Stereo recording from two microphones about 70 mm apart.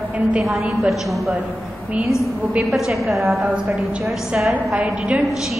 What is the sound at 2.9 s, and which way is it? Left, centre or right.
Speech, centre.